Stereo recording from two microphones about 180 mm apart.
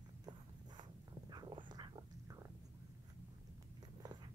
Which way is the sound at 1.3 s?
25° right (ahead or behind).